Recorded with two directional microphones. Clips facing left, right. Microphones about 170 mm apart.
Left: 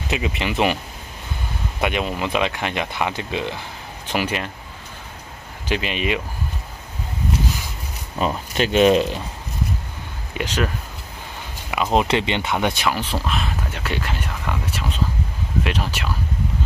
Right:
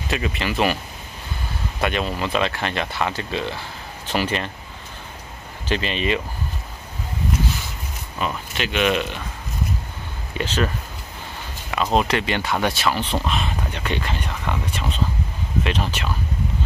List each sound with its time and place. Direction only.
0.1 s speech: 20° left (ahead or behind)
1.8 s speech: 15° left (ahead or behind)
5.7 s speech: 10° left (ahead or behind)
8.2 s speech: 40° left (ahead or behind)
10.3 s speech: 10° left (ahead or behind)
11.7 s speech: 15° left (ahead or behind)